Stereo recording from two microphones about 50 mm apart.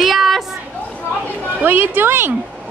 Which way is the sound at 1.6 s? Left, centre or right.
Right.